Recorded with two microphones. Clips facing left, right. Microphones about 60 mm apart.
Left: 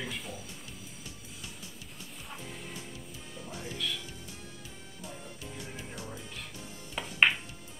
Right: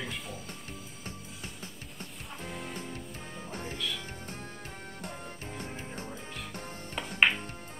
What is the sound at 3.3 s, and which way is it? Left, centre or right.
Music, right.